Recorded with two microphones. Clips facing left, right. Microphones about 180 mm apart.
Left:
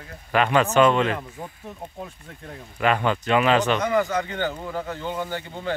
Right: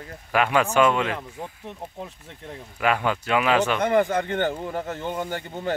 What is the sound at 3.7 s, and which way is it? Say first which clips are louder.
Speech: right 2 dB; 55° right (ahead or behind).